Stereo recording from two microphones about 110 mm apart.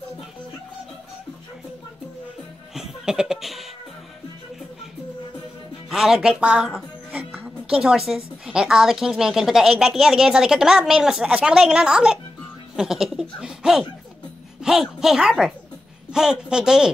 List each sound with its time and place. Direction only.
2.7 s music: 5° right (ahead or behind)
5.9 s music: 5° right (ahead or behind)
8.5 s speech: 5° right (ahead or behind)